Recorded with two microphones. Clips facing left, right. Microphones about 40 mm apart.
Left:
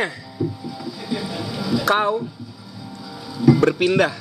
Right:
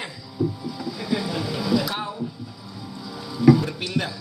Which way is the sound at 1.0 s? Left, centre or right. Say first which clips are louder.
Right 1 dB; centre.